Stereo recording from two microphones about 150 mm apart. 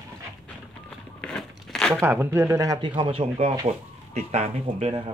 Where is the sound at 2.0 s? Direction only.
15° right (ahead or behind).